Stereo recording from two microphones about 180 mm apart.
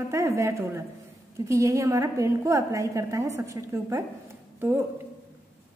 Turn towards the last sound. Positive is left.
turn(degrees=-10)  # may be behind; listen again after turning